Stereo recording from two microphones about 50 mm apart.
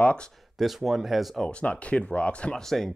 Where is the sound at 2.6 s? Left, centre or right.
Centre.